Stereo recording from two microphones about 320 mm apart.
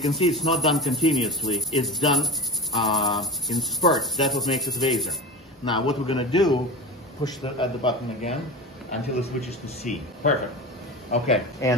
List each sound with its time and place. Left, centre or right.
0.1 s speech: centre
5.7 s a man's voice: centre